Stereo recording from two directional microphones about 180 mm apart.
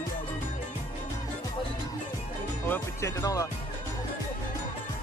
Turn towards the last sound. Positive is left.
turn(degrees=20)  # may be behind; listen again after turning